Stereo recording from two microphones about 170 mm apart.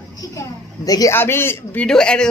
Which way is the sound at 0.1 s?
20° left (ahead or behind).